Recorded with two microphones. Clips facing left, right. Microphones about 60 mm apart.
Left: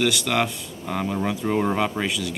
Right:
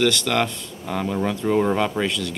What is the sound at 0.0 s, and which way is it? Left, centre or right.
Speech, centre.